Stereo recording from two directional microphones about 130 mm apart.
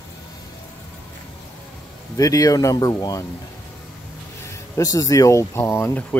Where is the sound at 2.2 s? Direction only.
25° left (ahead or behind).